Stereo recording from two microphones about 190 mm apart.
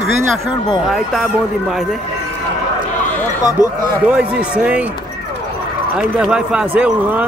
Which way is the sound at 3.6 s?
45° right (ahead or behind).